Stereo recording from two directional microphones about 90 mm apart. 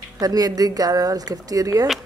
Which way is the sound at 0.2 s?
45° right (ahead or behind).